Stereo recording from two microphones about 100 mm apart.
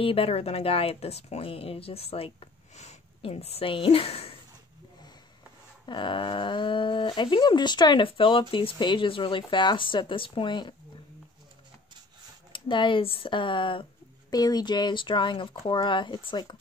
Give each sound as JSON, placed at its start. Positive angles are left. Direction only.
{"t": 0.0, "sound": "speech", "side_deg": 70}
{"t": 5.9, "sound": "speech", "side_deg": 55}
{"t": 8.1, "sound": "speech", "side_deg": 60}
{"t": 12.5, "sound": "speech", "side_deg": 55}
{"t": 14.3, "sound": "speech", "side_deg": 40}